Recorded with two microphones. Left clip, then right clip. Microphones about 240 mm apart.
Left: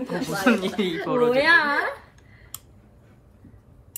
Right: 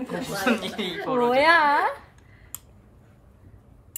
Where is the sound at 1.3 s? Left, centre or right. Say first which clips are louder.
Right 1 dB; centre.